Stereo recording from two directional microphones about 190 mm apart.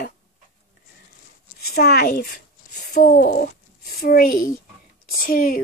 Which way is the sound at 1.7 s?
55° left (ahead or behind).